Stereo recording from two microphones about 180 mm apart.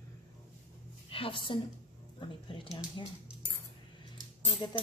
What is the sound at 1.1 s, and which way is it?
A woman's voice, 30° left (ahead or behind).